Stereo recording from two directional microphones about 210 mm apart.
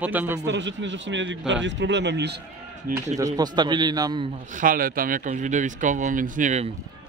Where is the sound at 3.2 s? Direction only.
15° right (ahead or behind).